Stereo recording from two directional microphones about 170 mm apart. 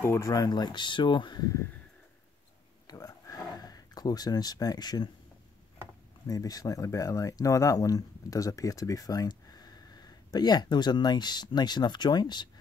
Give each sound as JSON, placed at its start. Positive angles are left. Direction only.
{"t": 0.0, "sound": "speech", "side_deg": 15}
{"t": 2.9, "sound": "a sound", "side_deg": 20}
{"t": 6.2, "sound": "speech", "side_deg": 20}